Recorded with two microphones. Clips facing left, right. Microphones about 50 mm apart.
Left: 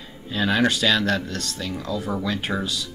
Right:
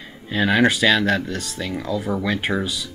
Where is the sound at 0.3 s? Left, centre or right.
Right.